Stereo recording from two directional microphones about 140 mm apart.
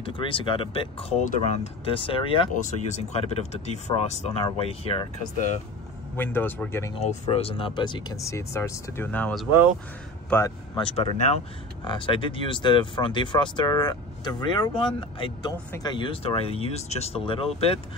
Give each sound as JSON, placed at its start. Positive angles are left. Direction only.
{"t": 0.0, "sound": "speech", "side_deg": 40}
{"t": 1.2, "sound": "speech", "side_deg": 60}
{"t": 2.5, "sound": "speech", "side_deg": 60}
{"t": 6.1, "sound": "a man's voice", "side_deg": 15}
{"t": 7.0, "sound": "speech", "side_deg": 50}
{"t": 10.3, "sound": "speech", "side_deg": 25}
{"t": 10.8, "sound": "speech", "side_deg": 35}